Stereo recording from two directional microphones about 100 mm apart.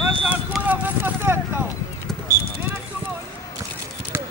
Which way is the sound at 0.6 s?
20° right (ahead or behind).